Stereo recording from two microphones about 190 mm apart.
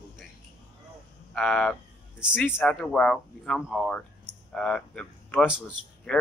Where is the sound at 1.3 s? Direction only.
5° left (ahead or behind).